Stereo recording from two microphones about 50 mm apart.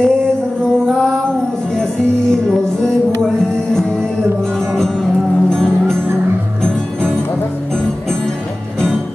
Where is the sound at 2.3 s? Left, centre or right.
Centre.